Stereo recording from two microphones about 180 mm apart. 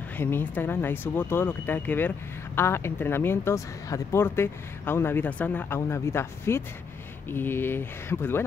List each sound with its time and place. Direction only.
0.2 s speech: 10° left (ahead or behind)